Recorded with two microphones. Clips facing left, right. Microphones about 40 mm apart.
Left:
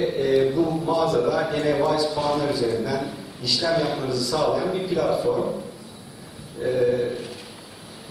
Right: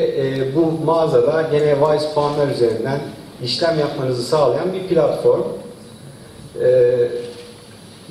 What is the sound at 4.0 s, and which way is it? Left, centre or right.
A man's voice, centre.